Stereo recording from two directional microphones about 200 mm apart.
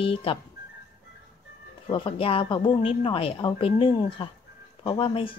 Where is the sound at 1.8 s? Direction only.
25° left (ahead or behind).